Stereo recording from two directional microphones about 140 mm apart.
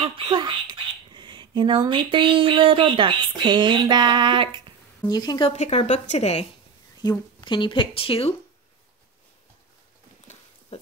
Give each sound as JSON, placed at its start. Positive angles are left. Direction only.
{"t": 0.0, "sound": "speech", "side_deg": -35}
{"t": 5.0, "sound": "a woman's voice", "side_deg": 30}
{"t": 5.5, "sound": "a woman's voice", "side_deg": 50}
{"t": 7.0, "sound": "speech", "side_deg": 30}
{"t": 10.7, "sound": "a sound", "side_deg": 50}